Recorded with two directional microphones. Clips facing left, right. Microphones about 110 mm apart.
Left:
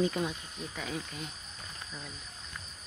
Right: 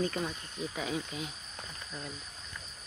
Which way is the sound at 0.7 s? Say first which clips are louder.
Right 2 dB; 5° right (ahead or behind).